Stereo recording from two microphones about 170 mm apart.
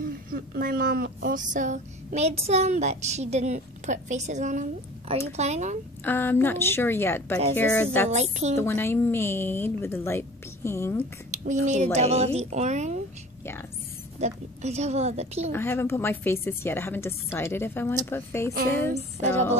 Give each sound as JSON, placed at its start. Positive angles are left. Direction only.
{"t": 0.0, "sound": "a woman's voice", "side_deg": -55}
{"t": 6.0, "sound": "a woman's voice", "side_deg": 10}
{"t": 8.1, "sound": "a woman's voice", "side_deg": -40}
{"t": 8.5, "sound": "a woman's voice", "side_deg": 15}
{"t": 11.3, "sound": "speech", "side_deg": -45}
{"t": 14.2, "sound": "a woman's voice", "side_deg": -40}
{"t": 15.5, "sound": "a woman's voice", "side_deg": 15}